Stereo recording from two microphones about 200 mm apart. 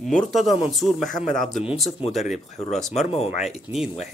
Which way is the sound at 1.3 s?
Centre (ahead or behind).